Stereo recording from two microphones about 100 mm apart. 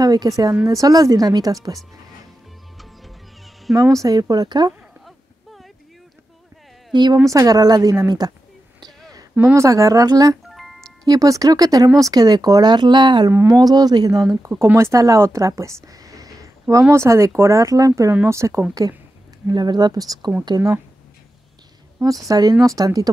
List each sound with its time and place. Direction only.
0.0 s speech: 40° right (ahead or behind)
3.7 s speech: 35° right (ahead or behind)
5.0 s a sound: centre (ahead or behind)
6.9 s a woman's voice: 45° right (ahead or behind)
7.2 s speech: 35° right (ahead or behind)
9.4 s speech: 30° right (ahead or behind)
10.5 s music: centre (ahead or behind)
11.1 s speech: 35° right (ahead or behind)
14.6 s speech: 30° right (ahead or behind)
22.3 s speech: 40° right (ahead or behind)